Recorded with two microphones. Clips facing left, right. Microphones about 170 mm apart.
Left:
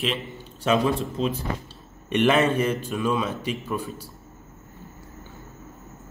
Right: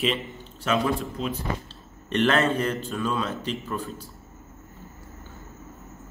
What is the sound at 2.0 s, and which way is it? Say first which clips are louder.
A man's voice: left 2 dB; 10° left (ahead or behind).